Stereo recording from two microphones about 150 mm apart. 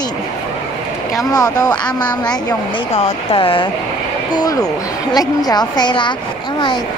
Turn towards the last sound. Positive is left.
turn(degrees=30)  # may be behind; listen again after turning